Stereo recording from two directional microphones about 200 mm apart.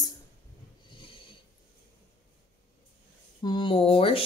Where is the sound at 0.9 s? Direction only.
25° left (ahead or behind).